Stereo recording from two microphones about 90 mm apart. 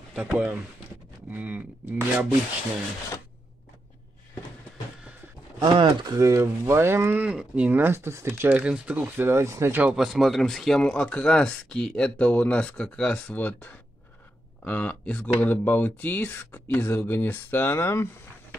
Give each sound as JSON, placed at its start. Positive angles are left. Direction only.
{"t": 0.1, "sound": "speech", "side_deg": -10}
{"t": 5.6, "sound": "speech", "side_deg": -50}
{"t": 6.1, "sound": "speech", "side_deg": -35}
{"t": 7.2, "sound": "speech", "side_deg": -10}
{"t": 9.8, "sound": "speech", "side_deg": -5}